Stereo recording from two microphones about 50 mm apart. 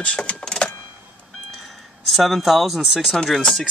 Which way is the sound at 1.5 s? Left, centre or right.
Centre.